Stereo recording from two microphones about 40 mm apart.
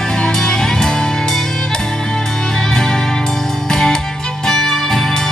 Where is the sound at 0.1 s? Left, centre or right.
Centre.